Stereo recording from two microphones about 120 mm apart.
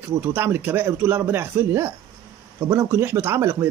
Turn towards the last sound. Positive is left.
turn(degrees=-25)  # may be behind; listen again after turning